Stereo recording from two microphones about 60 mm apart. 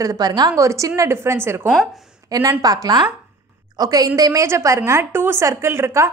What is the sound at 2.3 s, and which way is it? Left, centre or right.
Speech, right.